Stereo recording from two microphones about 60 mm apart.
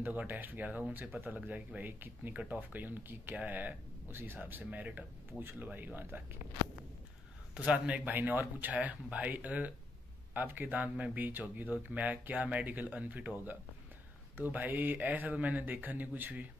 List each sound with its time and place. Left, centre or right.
0.3 s speech: right
4.1 s speech: right
5.4 s speech: right
5.7 s speech: right
7.5 s speech: right